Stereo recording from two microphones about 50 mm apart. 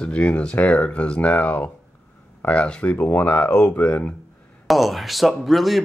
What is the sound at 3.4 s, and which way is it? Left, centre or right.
Speech, left.